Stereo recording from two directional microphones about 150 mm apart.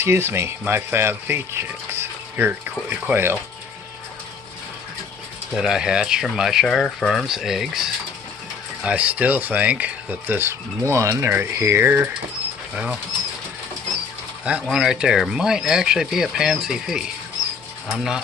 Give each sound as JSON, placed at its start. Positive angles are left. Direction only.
{"t": 0.0, "sound": "speech", "side_deg": -15}
{"t": 5.5, "sound": "speech", "side_deg": -5}
{"t": 14.4, "sound": "speech", "side_deg": -5}